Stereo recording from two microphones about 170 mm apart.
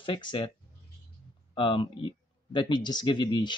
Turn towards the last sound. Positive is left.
turn(degrees=25)  # may be behind; listen again after turning